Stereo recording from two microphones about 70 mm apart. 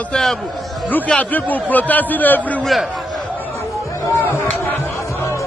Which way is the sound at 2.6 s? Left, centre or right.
Centre.